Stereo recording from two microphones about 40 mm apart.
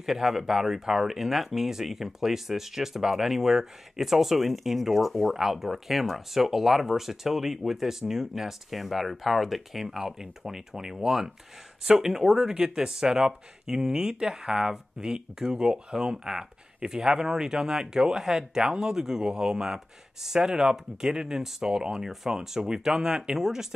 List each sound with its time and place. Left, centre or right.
0.0 s speech: centre